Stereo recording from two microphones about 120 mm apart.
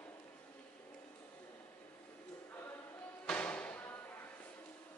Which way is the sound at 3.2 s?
10° left (ahead or behind).